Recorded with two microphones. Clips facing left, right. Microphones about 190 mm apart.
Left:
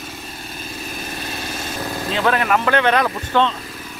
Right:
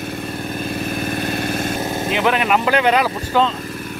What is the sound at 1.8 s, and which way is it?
Speech, 20° right (ahead or behind).